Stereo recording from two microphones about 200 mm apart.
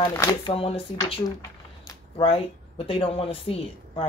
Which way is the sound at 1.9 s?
30° left (ahead or behind).